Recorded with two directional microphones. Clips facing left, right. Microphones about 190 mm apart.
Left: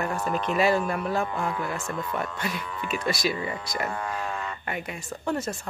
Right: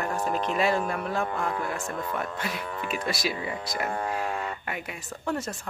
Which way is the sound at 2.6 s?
45° right (ahead or behind).